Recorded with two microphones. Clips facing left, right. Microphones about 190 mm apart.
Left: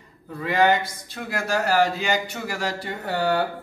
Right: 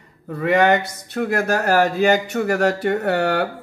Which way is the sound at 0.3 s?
70° right (ahead or behind).